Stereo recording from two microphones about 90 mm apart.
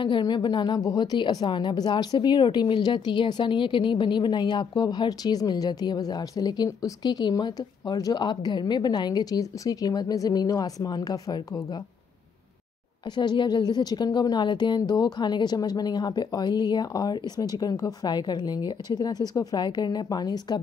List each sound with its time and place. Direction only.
0.2 s a woman's voice: 60° left (ahead or behind)
13.1 s a woman's voice: 55° left (ahead or behind)